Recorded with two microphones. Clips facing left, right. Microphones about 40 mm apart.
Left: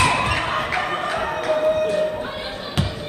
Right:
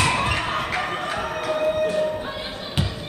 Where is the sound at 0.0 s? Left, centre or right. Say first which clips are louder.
Left 2 dB; centre.